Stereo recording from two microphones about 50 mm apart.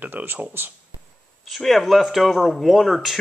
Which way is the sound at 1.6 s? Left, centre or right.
Centre.